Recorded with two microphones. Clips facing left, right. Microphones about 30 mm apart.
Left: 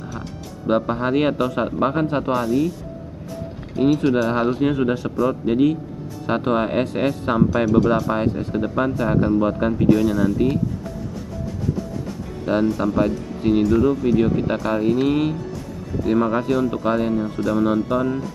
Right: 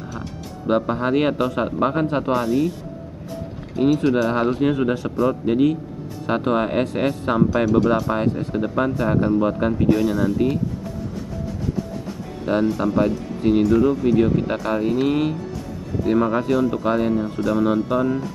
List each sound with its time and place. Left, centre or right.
0.7 s speech: centre
2.3 s speech: centre
3.7 s speech: centre
12.7 s speech: centre